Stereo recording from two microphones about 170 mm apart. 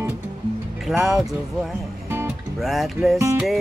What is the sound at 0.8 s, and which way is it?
Music, centre (ahead or behind).